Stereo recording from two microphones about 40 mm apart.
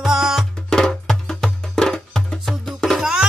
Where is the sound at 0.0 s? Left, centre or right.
Centre.